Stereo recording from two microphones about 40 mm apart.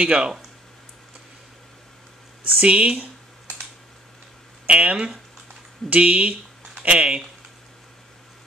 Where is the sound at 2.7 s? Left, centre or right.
Right.